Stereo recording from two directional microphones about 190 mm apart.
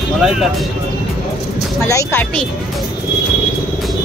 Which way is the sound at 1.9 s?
15° left (ahead or behind).